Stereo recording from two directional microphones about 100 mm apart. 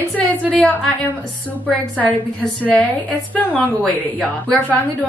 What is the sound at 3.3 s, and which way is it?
A woman's voice, 15° left (ahead or behind).